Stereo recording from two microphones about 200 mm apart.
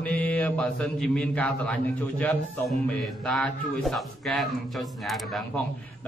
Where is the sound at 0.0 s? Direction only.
5° left (ahead or behind).